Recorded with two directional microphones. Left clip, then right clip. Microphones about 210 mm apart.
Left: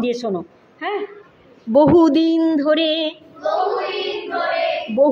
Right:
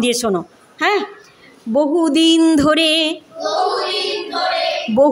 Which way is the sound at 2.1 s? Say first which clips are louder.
Right 4 dB; 25° right (ahead or behind).